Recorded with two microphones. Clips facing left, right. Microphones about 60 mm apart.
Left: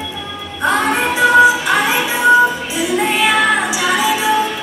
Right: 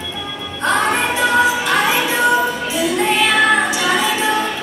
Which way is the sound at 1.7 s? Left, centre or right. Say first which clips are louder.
Even; centre.